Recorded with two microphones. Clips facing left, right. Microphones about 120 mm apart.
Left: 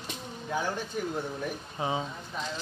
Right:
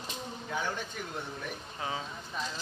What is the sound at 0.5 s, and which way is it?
Speech, 10° left (ahead or behind).